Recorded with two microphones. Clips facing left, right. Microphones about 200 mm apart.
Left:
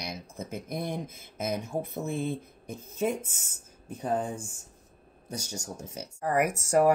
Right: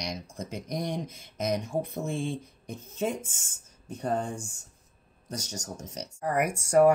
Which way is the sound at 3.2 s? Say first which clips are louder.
Left 1 dB; 65° left (ahead or behind).